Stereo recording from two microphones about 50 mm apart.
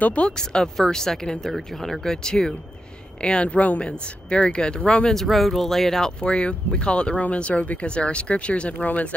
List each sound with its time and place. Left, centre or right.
0.0 s speech: left
0.4 s speech: centre
5.1 s speech: centre
6.2 s speech: centre